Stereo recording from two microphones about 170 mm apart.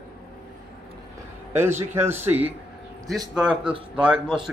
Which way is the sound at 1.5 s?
15° right (ahead or behind).